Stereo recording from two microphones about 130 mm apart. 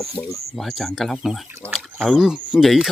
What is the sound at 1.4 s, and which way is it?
Speech, 15° right (ahead or behind).